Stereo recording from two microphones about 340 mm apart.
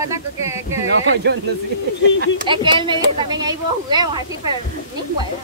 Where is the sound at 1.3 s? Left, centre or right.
Right.